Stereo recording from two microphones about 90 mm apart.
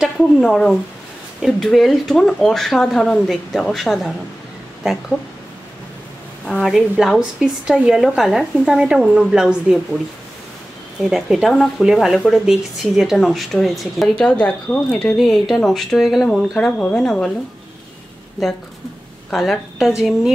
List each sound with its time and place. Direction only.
0.0 s speech: centre (ahead or behind)
6.4 s a woman's voice: centre (ahead or behind)
11.1 s speech: 5° right (ahead or behind)
15.1 s speech: centre (ahead or behind)
19.3 s speech: 5° left (ahead or behind)